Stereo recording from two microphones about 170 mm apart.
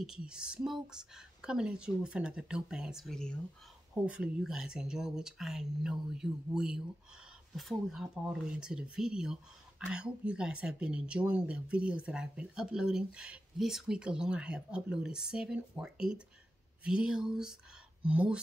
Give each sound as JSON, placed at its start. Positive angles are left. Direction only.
{"t": 0.0, "sound": "speech", "side_deg": -5}